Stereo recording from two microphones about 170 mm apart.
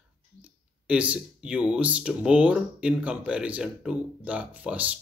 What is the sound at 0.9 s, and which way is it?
Speech, 5° right (ahead or behind).